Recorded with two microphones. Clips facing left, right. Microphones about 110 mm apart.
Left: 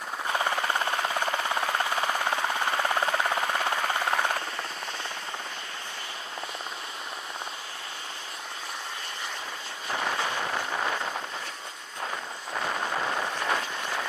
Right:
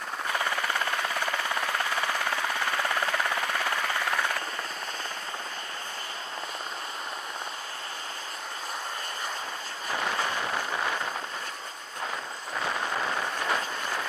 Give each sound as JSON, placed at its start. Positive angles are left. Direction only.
{"t": 0.3, "sound": "helicopter", "side_deg": 25}